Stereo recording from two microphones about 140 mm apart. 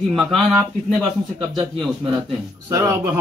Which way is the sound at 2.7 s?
20° right (ahead or behind).